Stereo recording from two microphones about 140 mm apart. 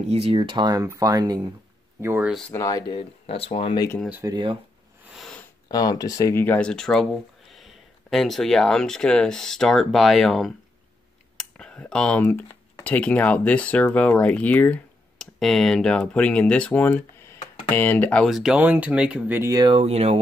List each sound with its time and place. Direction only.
0.1 s speech: 45° right (ahead or behind); by 2.2 s 20° right (ahead or behind)
2.5 s speech: 25° left (ahead or behind)
2.9 s speech: 40° left (ahead or behind)
4.3 s speech: 35° right (ahead or behind)
5.1 s sniff: centre (ahead or behind)
5.7 s speech: 25° left (ahead or behind)
18.2 s speech: centre (ahead or behind)
19.5 s speech: 30° right (ahead or behind)
19.8 s speech: 50° right (ahead or behind)